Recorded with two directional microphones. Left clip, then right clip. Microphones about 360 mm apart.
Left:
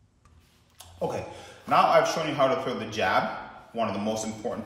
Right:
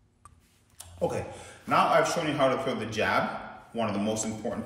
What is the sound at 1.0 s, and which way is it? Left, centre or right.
A man's voice, centre.